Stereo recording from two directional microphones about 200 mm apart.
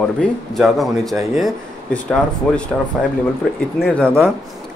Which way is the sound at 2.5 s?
5° left (ahead or behind).